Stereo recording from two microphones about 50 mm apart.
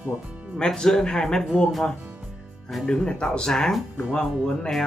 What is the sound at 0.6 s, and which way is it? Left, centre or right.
Speech, centre.